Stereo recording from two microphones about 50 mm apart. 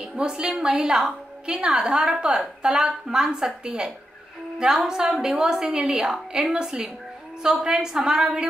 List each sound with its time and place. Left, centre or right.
0.0 s a woman's voice: centre